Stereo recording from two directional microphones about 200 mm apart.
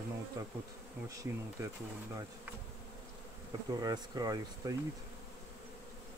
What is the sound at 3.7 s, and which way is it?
Speech, 20° right (ahead or behind).